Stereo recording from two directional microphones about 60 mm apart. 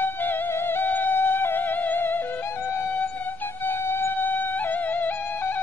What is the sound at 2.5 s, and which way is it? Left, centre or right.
Music, left.